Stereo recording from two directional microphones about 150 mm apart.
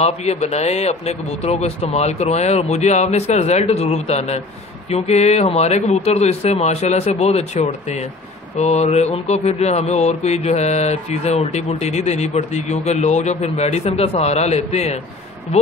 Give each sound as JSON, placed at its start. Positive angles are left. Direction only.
{"t": 0.0, "sound": "speech", "side_deg": 45}